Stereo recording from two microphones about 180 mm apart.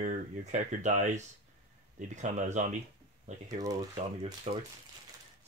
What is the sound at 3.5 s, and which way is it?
Speech, 20° right (ahead or behind).